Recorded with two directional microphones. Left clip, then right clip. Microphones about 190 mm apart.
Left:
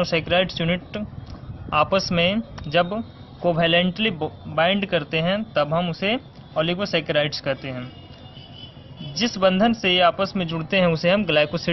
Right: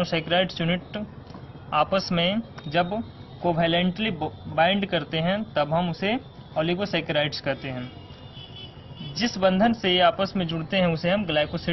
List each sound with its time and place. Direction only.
0.0 s speech: 30° left (ahead or behind)
9.4 s speech: 30° left (ahead or behind)